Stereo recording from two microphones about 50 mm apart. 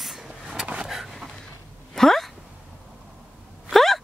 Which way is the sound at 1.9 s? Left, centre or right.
Centre.